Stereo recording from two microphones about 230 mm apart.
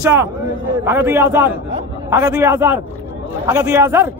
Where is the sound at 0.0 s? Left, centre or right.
Centre.